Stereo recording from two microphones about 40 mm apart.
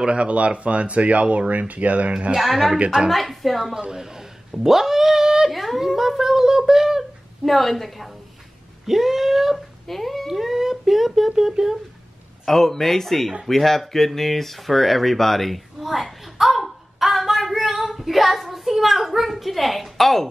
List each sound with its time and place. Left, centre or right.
0.0 s speech: right
2.3 s a woman's voice: centre
3.9 s speech: centre
7.4 s a woman's voice: centre
8.8 s cat: centre
9.8 s speech: centre
10.2 s speech: centre
12.4 s speech: centre